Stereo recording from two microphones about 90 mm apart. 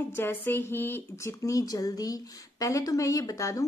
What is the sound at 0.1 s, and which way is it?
Speech, 25° left (ahead or behind).